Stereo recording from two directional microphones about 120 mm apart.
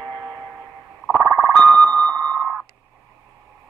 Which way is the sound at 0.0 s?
25° right (ahead or behind).